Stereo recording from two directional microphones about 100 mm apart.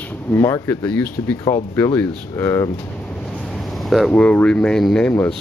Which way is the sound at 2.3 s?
25° left (ahead or behind).